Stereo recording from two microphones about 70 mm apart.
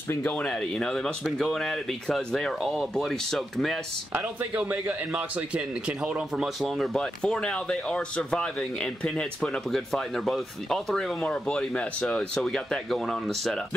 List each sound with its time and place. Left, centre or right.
0.2 s speech: centre
4.1 s a man's voice: right
6.4 s speech: centre
7.0 s speech: centre
11.2 s speech: centre